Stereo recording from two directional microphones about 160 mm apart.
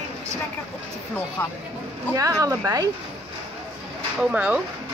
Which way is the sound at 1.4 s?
10° left (ahead or behind).